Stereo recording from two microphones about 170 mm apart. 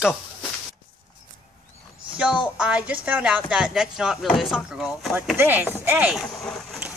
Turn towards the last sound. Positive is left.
turn(degrees=5)  # may be behind; listen again after turning